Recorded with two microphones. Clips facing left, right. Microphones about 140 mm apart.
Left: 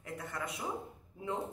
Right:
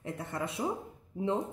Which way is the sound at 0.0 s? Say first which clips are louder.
Right 5 dB; 25° right (ahead or behind).